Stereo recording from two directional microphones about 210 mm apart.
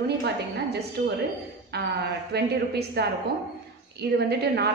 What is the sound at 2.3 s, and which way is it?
A woman's voice, 50° right (ahead or behind).